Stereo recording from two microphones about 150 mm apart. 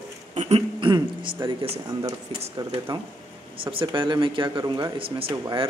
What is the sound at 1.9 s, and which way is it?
Speech, 25° right (ahead or behind).